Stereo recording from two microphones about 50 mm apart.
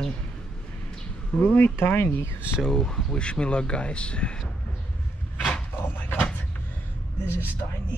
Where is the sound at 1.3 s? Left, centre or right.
Left.